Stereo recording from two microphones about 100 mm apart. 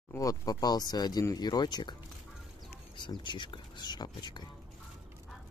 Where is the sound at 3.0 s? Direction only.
50° left (ahead or behind).